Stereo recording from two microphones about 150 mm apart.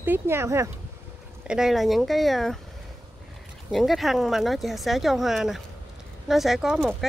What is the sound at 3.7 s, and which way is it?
Speech, centre (ahead or behind).